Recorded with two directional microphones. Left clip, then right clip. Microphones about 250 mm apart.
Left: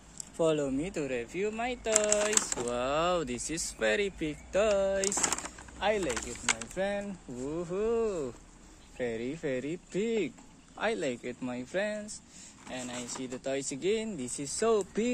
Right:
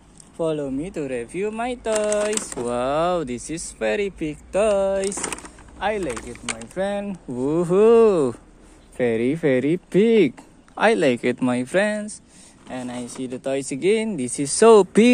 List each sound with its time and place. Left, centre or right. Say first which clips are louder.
0.4 s speech: right 4 dB; centre; by 2.0 s right
2.1 s speech: right 6 dB; centre
5.2 s speech: right 2 dB; centre
7.4 s speech: right 16 dB; right